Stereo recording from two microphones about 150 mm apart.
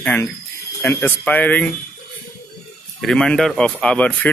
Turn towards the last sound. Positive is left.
turn(degrees=10)  # may be behind; listen again after turning